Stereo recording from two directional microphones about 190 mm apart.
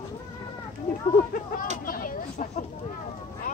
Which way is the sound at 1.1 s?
45° left (ahead or behind).